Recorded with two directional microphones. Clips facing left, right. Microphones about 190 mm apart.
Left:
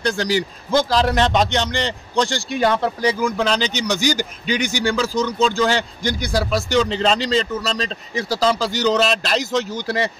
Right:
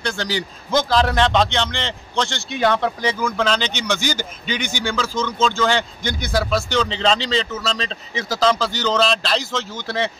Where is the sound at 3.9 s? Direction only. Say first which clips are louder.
Left 3 dB; 40° left (ahead or behind).